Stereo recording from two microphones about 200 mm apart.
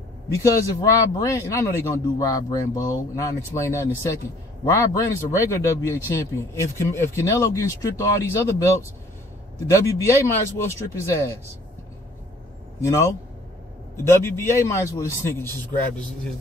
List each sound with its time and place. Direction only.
0.3 s a man's voice: 15° left (ahead or behind)
12.8 s a man's voice: 15° left (ahead or behind)